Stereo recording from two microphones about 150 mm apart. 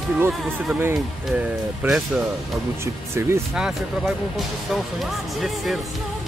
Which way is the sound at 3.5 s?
5° right (ahead or behind).